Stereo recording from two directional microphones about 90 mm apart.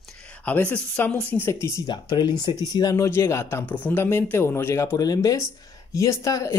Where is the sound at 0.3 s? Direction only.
15° left (ahead or behind).